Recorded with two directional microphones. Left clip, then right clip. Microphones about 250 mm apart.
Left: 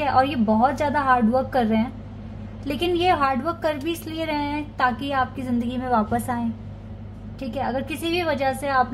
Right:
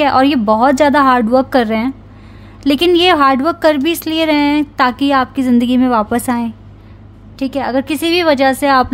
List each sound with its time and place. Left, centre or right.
0.0 s a woman's voice: right
5.7 s speech: right
7.3 s a woman's voice: right